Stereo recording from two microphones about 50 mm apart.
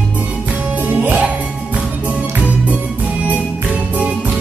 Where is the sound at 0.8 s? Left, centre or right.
Right.